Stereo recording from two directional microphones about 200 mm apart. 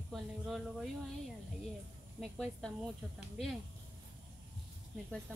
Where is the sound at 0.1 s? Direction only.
Centre (ahead or behind).